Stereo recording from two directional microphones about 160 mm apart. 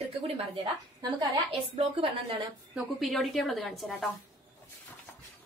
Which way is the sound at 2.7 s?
Centre (ahead or behind).